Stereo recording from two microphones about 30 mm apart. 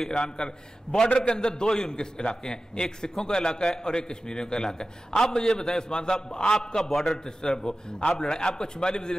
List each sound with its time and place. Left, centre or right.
0.1 s a man's voice: left
6.8 s a man's voice: centre
7.2 s a man's voice: left